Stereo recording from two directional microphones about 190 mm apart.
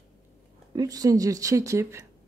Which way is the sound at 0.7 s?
20° right (ahead or behind).